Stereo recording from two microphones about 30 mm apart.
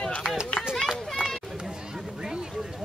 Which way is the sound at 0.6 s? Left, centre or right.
Centre.